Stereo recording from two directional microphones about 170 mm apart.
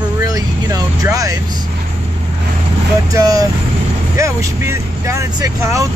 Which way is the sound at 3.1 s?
20° right (ahead or behind).